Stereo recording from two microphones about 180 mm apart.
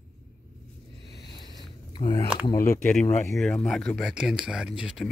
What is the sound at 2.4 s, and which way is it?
Speech, 15° left (ahead or behind).